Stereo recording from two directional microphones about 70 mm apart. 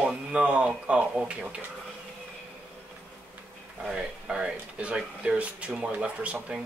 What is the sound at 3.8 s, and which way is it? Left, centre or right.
Speech, centre.